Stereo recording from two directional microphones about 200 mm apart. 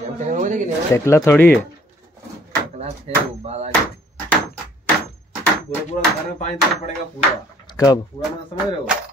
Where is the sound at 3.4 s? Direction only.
35° right (ahead or behind).